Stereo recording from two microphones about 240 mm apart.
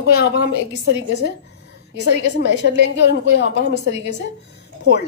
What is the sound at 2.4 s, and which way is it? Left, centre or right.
A woman's voice, left.